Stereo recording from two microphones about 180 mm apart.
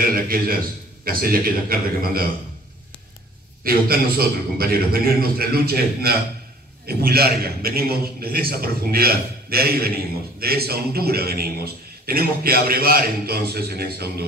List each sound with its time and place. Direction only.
0.0 s a man's voice: 55° right (ahead or behind)
3.6 s a man's voice: 55° right (ahead or behind)